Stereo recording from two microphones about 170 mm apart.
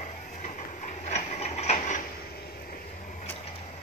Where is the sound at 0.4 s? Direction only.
45° left (ahead or behind).